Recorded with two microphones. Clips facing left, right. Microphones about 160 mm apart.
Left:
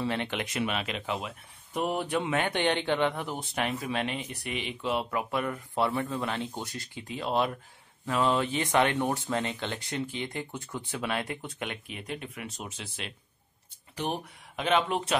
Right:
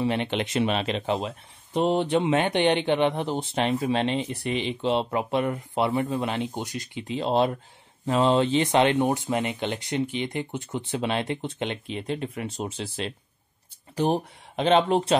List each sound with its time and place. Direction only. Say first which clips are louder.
0.0 s speech: right 5 dB; 20° right (ahead or behind)